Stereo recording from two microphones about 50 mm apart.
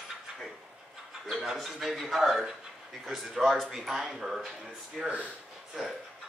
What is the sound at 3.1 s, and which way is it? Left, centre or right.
Speech, centre.